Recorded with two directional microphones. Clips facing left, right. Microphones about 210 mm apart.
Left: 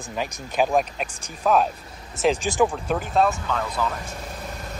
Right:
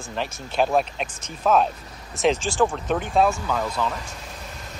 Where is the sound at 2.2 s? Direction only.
15° left (ahead or behind).